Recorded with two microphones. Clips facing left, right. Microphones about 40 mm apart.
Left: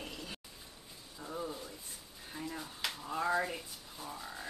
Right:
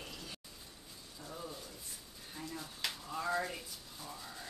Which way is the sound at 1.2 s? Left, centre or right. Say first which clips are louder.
Left 5 dB; left.